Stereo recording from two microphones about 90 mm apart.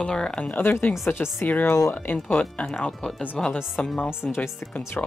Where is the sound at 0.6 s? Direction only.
25° left (ahead or behind).